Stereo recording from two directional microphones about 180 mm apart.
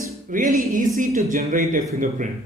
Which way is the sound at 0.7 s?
50° right (ahead or behind).